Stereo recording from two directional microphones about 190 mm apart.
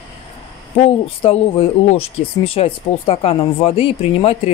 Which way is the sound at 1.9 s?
30° left (ahead or behind).